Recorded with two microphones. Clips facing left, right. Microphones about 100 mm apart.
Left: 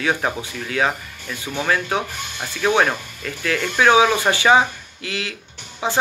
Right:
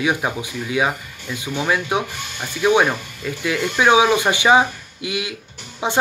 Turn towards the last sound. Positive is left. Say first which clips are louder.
# right 1 dB
turn(degrees=-20)  # may be behind; listen again after turning